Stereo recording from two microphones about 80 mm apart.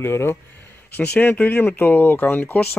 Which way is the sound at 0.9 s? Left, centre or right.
Centre.